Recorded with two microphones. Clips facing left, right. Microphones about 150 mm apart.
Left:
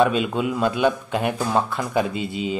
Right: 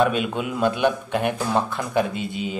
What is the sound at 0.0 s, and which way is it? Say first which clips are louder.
A man's voice: left 2 dB; centre (ahead or behind).